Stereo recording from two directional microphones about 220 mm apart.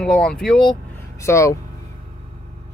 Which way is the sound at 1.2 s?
15° left (ahead or behind).